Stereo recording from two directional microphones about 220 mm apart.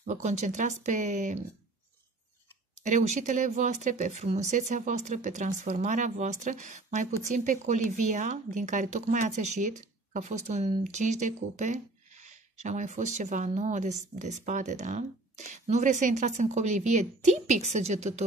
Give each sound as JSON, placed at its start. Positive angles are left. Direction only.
{"t": 0.0, "sound": "speech", "side_deg": -35}
{"t": 2.8, "sound": "speech", "side_deg": -30}